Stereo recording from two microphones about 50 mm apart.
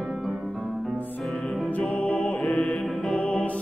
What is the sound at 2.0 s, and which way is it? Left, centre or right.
Music, left.